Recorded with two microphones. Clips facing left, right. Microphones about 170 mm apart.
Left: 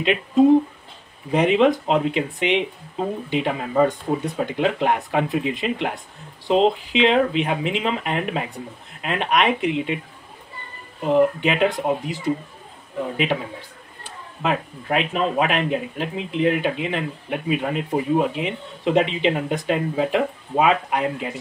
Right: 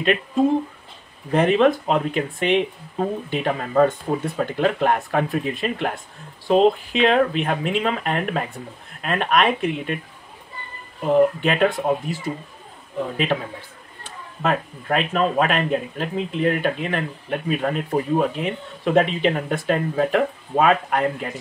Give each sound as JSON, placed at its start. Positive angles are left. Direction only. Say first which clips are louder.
{"t": 0.0, "sound": "speech", "louder": "left 3 dB", "side_deg": 15}
{"t": 11.4, "sound": "speech", "louder": "right 1 dB", "side_deg": 15}
{"t": 14.0, "sound": "speech", "louder": "right 1 dB", "side_deg": 10}